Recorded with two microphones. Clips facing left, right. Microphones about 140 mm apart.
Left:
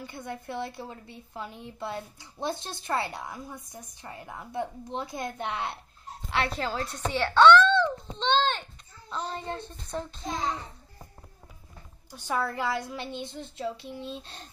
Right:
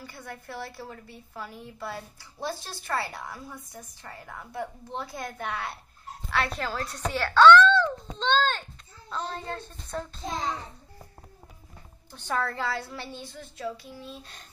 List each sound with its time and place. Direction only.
0.0 s a woman's voice: 20° left (ahead or behind)
12.1 s a woman's voice: 10° left (ahead or behind); by 14.5 s 30° left (ahead or behind)